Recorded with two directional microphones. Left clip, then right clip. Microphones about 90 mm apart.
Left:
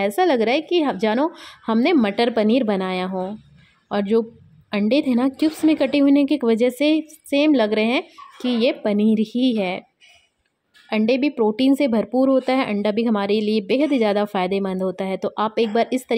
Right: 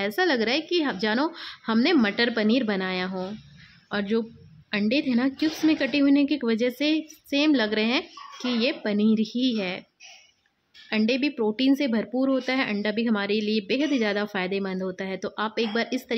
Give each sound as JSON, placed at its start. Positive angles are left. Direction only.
{"t": 0.0, "sound": "a woman's voice", "side_deg": 35}
{"t": 10.9, "sound": "a woman's voice", "side_deg": 40}